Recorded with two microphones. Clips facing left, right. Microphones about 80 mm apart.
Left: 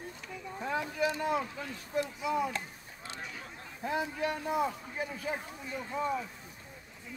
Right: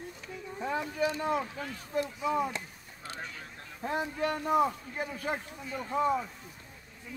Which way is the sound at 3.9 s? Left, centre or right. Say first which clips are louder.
Right 1 dB; right.